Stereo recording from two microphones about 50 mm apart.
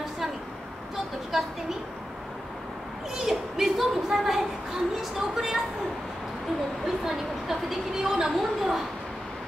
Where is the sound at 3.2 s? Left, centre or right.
Centre.